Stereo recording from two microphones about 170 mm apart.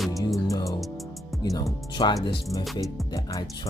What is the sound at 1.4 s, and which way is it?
Speech, 20° left (ahead or behind).